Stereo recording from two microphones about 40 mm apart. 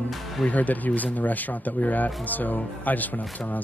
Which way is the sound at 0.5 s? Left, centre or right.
Left.